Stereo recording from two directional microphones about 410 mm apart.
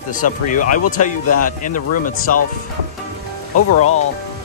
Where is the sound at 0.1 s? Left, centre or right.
Centre.